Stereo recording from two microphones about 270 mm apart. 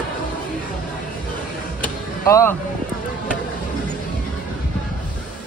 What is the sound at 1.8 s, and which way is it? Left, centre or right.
Music, centre.